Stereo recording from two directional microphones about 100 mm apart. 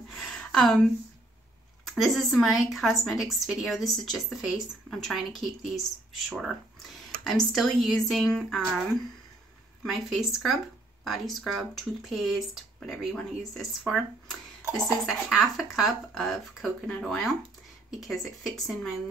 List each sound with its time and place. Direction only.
0.1 s a sound: 5° left (ahead or behind)
1.9 s speech: centre (ahead or behind)
9.8 s speech: centre (ahead or behind)